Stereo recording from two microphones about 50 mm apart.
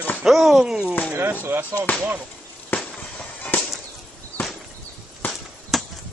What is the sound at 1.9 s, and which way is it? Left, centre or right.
Basketball bounce, left.